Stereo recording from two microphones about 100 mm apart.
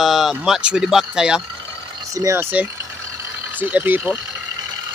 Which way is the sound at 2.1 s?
30° right (ahead or behind).